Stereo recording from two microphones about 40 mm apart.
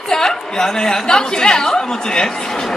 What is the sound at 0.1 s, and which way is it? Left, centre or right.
A woman's voice, centre.